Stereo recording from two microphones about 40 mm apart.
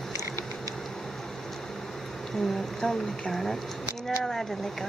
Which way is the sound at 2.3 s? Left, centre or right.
Centre.